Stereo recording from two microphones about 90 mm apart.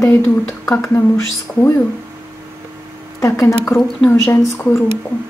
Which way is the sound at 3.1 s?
35° left (ahead or behind).